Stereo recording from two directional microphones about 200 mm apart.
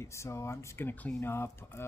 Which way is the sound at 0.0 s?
15° left (ahead or behind).